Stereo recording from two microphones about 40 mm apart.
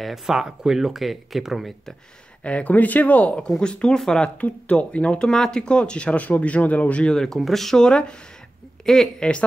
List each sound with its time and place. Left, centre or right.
0.0 s speech: centre
2.4 s speech: left
2.7 s speech: left
3.4 s speech: centre
4.4 s speech: left
5.3 s speech: centre
6.1 s speech: left
7.3 s speech: centre
7.8 s speech: left